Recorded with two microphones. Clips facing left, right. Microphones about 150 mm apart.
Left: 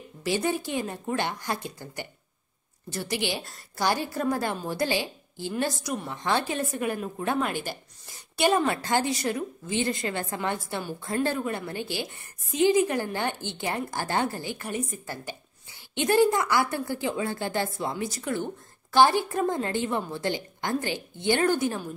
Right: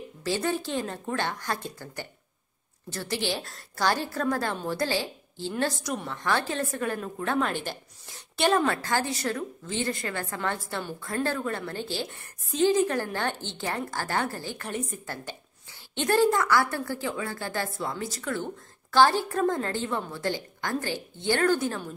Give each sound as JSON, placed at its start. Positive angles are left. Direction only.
{"t": 0.2, "sound": "a woman's voice", "side_deg": 15}